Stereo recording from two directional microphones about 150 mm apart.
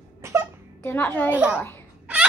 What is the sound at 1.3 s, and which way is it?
Speech, 10° right (ahead or behind).